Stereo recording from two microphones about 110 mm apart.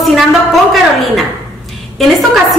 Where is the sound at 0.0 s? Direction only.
Centre (ahead or behind).